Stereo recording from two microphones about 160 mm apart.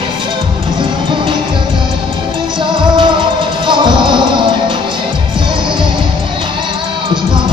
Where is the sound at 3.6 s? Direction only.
30° right (ahead or behind).